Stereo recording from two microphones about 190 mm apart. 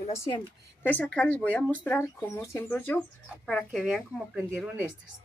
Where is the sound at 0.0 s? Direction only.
35° left (ahead or behind).